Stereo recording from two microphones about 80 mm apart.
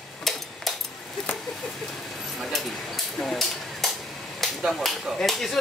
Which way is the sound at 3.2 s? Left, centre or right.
Centre.